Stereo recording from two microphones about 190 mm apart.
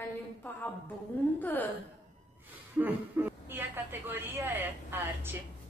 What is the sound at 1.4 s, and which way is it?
Speech, 10° left (ahead or behind).